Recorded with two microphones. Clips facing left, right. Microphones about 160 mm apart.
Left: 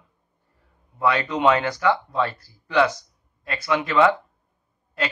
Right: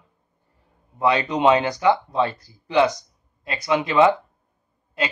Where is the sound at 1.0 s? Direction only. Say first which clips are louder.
Right 2 dB; 20° right (ahead or behind).